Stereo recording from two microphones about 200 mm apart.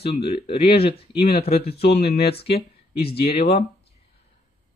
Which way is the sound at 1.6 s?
55° left (ahead or behind).